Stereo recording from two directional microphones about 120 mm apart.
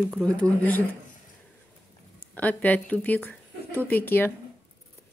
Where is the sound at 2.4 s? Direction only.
10° left (ahead or behind).